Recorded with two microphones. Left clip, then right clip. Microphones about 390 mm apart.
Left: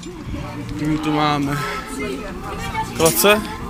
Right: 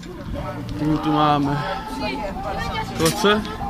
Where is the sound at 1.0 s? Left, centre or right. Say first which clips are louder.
Right 1 dB; centre.